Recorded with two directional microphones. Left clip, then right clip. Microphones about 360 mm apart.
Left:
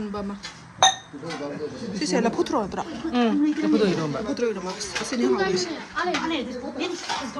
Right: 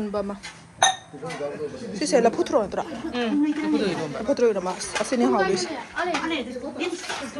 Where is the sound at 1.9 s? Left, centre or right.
Centre.